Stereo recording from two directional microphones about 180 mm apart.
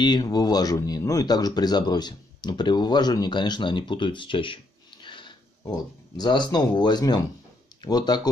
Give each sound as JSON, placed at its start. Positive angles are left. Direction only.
{"t": 0.0, "sound": "speech", "side_deg": 25}
{"t": 5.0, "sound": "sniff", "side_deg": 25}
{"t": 6.1, "sound": "speech", "side_deg": 25}